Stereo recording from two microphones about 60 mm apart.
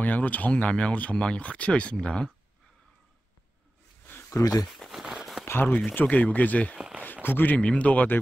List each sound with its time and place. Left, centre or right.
0.0 s speech: left
4.3 s speech: left
4.6 s speech: centre
5.4 s a sound: left
6.0 s speech: left
7.5 s speech: left